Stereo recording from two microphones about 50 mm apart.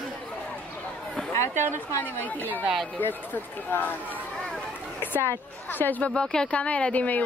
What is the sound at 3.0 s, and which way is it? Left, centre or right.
Speech, left.